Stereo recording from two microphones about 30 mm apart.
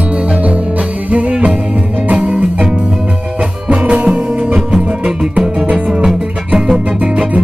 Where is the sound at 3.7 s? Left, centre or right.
Right.